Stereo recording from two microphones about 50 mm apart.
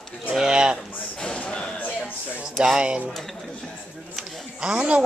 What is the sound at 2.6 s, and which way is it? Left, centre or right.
Speech, centre.